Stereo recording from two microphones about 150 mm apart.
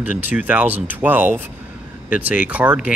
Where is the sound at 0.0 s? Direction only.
10° right (ahead or behind).